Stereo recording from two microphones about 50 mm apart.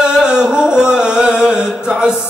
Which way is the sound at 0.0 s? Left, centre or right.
Centre.